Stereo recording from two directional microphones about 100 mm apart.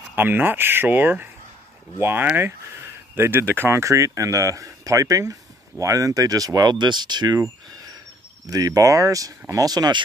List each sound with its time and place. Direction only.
0.1 s speech: 20° right (ahead or behind); by 7.4 s 45° right (ahead or behind)
8.5 s speech: 35° right (ahead or behind)